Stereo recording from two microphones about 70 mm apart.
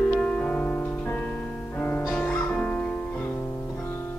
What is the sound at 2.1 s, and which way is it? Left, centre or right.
Music, centre.